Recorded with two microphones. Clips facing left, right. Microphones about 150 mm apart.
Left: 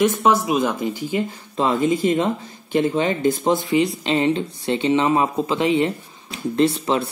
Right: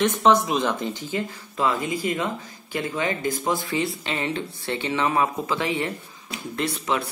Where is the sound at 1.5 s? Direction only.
25° left (ahead or behind).